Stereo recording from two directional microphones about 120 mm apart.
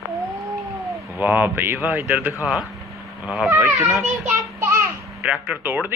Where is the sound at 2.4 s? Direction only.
10° right (ahead or behind).